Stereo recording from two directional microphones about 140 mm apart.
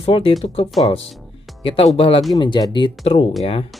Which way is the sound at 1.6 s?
40° left (ahead or behind).